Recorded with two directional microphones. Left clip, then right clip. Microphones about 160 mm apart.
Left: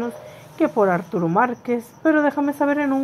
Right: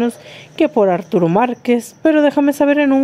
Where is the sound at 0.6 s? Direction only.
40° right (ahead or behind).